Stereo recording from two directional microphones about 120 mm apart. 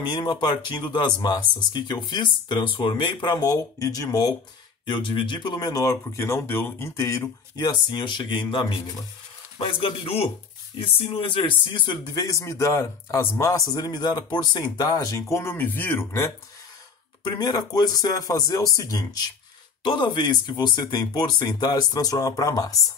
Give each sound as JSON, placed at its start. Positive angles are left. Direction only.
{"t": 0.0, "sound": "speech", "side_deg": 40}
{"t": 4.8, "sound": "speech", "side_deg": 45}
{"t": 17.2, "sound": "speech", "side_deg": 35}
{"t": 19.8, "sound": "speech", "side_deg": 40}